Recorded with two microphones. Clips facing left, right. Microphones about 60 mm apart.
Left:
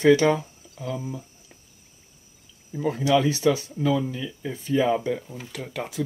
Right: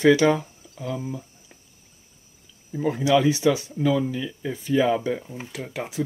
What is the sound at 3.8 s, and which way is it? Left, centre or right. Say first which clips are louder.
Speech: right 2 dB; centre.